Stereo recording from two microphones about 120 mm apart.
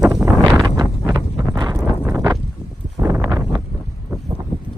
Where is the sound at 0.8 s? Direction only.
35° right (ahead or behind).